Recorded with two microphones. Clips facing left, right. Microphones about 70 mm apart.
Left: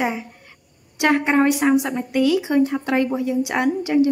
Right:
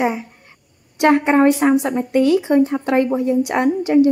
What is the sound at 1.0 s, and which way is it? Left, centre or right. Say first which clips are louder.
A woman's voice: right 4 dB; right.